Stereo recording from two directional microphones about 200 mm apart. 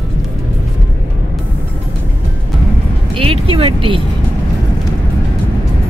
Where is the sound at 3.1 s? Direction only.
30° right (ahead or behind).